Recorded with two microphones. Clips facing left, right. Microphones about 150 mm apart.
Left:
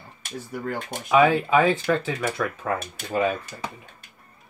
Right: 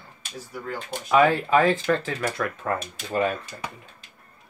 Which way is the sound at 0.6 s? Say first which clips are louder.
Left 1 dB; 55° left (ahead or behind).